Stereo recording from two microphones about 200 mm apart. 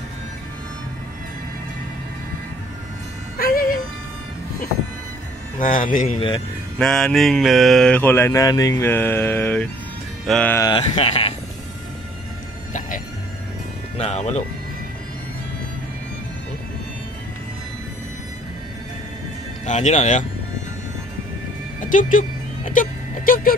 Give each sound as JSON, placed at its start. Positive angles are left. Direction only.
{"t": 3.3, "sound": "music", "side_deg": 45}
{"t": 5.6, "sound": "a man's voice", "side_deg": 45}
{"t": 6.1, "sound": "speech", "side_deg": 25}
{"t": 6.8, "sound": "mantra", "side_deg": 0}
{"t": 10.7, "sound": "speech", "side_deg": 30}
{"t": 13.9, "sound": "speech", "side_deg": 30}
{"t": 19.6, "sound": "speech", "side_deg": 35}
{"t": 21.7, "sound": "music", "side_deg": 40}
{"t": 22.7, "sound": "speech", "side_deg": 45}